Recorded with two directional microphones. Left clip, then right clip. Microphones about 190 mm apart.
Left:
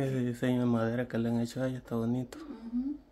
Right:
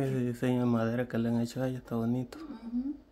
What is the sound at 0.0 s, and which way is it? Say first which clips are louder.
Speech: even; 5° right (ahead or behind).